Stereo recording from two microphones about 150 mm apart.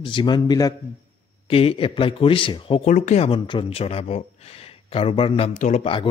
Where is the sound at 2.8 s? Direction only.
50° left (ahead or behind).